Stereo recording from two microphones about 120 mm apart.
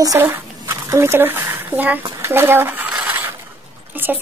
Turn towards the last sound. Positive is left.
turn(degrees=-15)  # may be behind; listen again after turning